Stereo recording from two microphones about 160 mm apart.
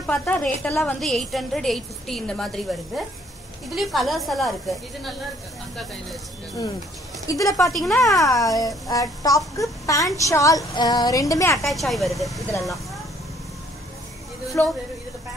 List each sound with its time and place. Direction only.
0.0 s a woman's voice: 10° left (ahead or behind)
3.7 s a woman's voice: centre (ahead or behind)
7.2 s a woman's voice: 20° left (ahead or behind)
7.7 s a woman's voice: centre (ahead or behind)
8.2 s a woman's voice: 20° left (ahead or behind)
11.6 s a woman's voice: centre (ahead or behind)
14.6 s a woman's voice: 10° left (ahead or behind)